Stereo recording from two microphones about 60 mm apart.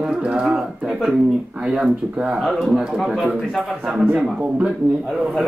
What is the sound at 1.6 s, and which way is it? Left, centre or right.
Speech, centre.